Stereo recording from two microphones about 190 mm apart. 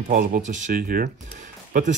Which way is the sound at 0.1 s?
45° right (ahead or behind).